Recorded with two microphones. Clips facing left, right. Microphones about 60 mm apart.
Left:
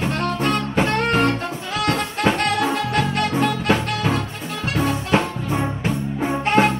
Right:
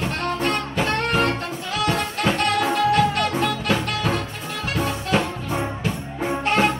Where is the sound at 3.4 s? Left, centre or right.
Centre.